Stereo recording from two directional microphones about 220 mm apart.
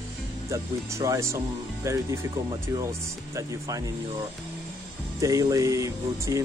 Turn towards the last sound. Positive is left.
turn(degrees=-15)  # may be behind; listen again after turning